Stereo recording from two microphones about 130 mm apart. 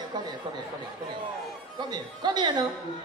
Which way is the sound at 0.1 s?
30° right (ahead or behind).